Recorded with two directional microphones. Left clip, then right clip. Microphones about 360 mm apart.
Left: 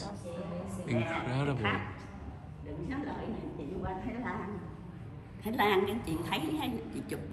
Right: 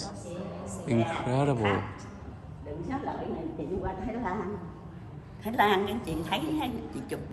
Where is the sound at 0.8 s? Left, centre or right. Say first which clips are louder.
Right 5 dB; centre.